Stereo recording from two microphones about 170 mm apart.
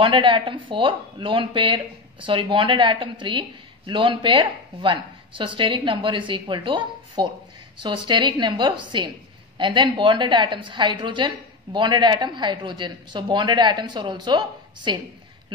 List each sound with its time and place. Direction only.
0.0 s speech: 30° right (ahead or behind)